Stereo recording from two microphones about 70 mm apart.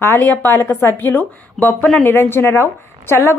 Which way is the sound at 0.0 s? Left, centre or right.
Left.